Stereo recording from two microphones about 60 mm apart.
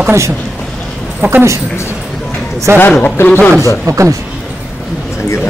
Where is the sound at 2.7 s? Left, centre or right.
Right.